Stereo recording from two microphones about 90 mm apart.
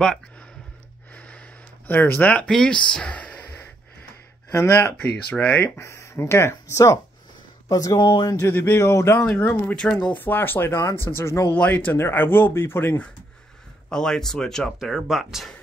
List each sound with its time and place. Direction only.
1.9 s speech: 20° left (ahead or behind)
4.5 s speech: 30° left (ahead or behind)
5.3 s speech: 15° left (ahead or behind)
5.8 s speech: 30° left (ahead or behind); by 8.4 s 50° left (ahead or behind)
8.4 s speech: 25° left (ahead or behind)
9.3 s speech: 15° left (ahead or behind)
11.5 s speech: 15° left (ahead or behind)
13.8 s speech: 5° left (ahead or behind)